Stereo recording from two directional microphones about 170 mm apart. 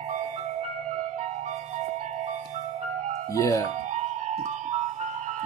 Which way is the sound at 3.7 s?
45° right (ahead or behind).